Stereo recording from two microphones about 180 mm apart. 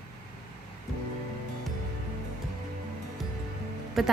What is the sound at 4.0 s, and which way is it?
Speech, centre (ahead or behind).